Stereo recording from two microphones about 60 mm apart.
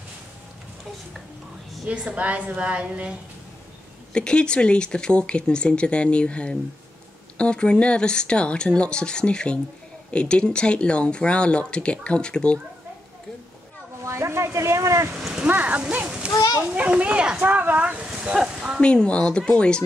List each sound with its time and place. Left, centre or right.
1.9 s a woman's voice: right
4.1 s speech: centre
14.0 s speech: right
15.1 s rain: centre
15.4 s a woman's voice: right
16.3 s children playing: left
16.7 s a woman's voice: right
18.8 s speech: centre